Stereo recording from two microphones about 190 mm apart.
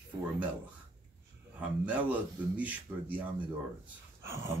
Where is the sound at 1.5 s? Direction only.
10° right (ahead or behind).